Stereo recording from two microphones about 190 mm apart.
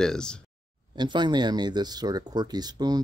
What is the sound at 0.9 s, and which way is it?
Speech, 25° right (ahead or behind).